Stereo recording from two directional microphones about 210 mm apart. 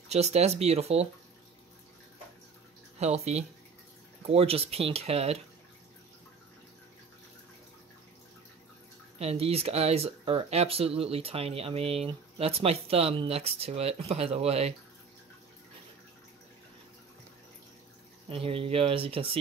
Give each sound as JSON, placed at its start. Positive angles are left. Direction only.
{"t": 0.1, "sound": "speech", "side_deg": -30}
{"t": 3.0, "sound": "speech", "side_deg": -30}
{"t": 9.2, "sound": "speech", "side_deg": -30}
{"t": 18.3, "sound": "speech", "side_deg": -25}